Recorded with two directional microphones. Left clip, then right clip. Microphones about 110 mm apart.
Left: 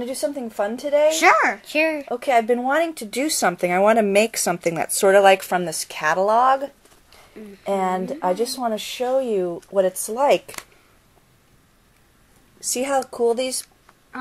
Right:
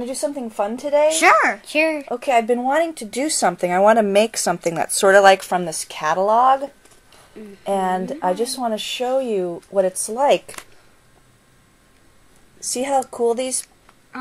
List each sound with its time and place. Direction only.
0.0 s speech: centre (ahead or behind)
1.0 s speech: 15° right (ahead or behind)
1.6 s speech: 5° left (ahead or behind)
2.2 s speech: 15° left (ahead or behind)
2.6 s speech: 5° left (ahead or behind)
9.1 s speech: 15° left (ahead or behind)
9.5 s speech: 5° left (ahead or behind)
12.7 s speech: 15° left (ahead or behind)